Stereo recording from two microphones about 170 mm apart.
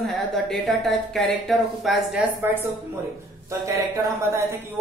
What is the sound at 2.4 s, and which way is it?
Speech, 10° right (ahead or behind).